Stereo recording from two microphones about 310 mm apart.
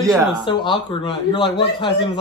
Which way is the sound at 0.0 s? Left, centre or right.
Centre.